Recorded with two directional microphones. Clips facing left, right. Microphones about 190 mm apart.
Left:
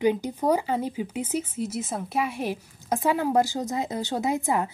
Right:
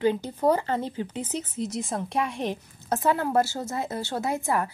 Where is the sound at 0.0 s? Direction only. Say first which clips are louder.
Even; 15° left (ahead or behind).